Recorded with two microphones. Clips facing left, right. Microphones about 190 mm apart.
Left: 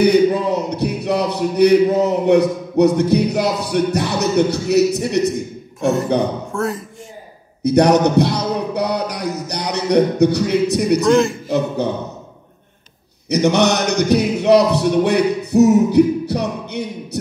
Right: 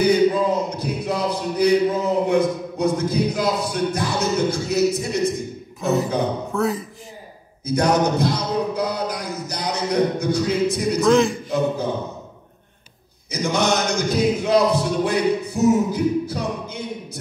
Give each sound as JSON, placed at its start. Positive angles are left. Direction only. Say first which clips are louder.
{"t": 0.0, "sound": "speech", "louder": "left 3 dB", "side_deg": 70}
{"t": 6.5, "sound": "speech", "louder": "even", "side_deg": 0}
{"t": 7.6, "sound": "a man's voice", "louder": "left 6 dB", "side_deg": 70}
{"t": 11.1, "sound": "speech", "louder": "even", "side_deg": 0}
{"t": 13.3, "sound": "a sound", "louder": "left 6 dB", "side_deg": 70}